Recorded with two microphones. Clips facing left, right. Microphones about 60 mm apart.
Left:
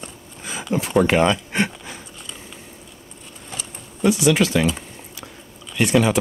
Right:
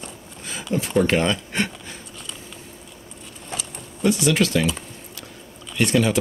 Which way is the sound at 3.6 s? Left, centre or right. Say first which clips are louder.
Left 3 dB; centre.